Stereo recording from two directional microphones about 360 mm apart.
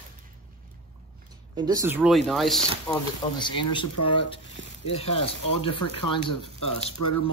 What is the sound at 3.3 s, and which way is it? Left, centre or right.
Speech, centre.